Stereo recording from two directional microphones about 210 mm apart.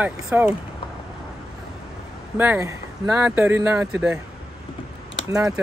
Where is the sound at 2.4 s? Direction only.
10° right (ahead or behind).